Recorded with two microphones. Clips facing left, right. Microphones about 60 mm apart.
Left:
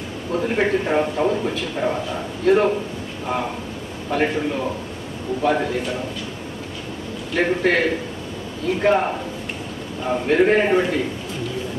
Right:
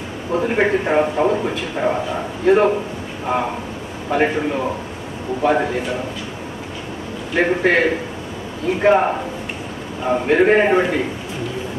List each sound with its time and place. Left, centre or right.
0.4 s a man's voice: right
4.1 s a man's voice: right
7.3 s a man's voice: right